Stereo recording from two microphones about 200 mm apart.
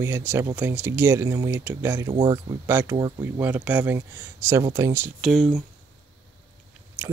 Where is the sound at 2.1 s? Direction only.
30° right (ahead or behind).